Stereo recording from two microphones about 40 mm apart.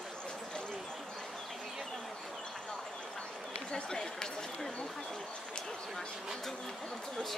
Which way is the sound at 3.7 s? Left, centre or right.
Left.